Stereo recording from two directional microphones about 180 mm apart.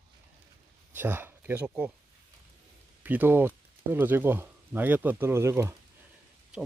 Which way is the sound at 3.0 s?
10° right (ahead or behind).